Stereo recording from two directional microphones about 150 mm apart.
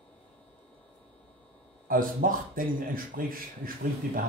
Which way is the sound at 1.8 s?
70° right (ahead or behind).